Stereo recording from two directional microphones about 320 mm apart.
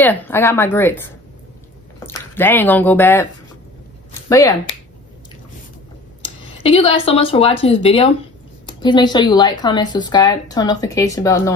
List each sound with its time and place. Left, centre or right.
0.0 s a woman's voice: centre
6.2 s a woman's voice: centre